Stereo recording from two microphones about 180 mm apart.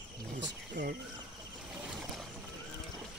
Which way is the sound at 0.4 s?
70° right (ahead or behind).